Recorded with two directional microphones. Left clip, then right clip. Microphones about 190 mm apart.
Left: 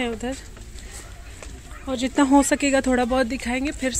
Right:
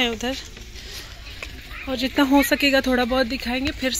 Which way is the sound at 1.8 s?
10° left (ahead or behind).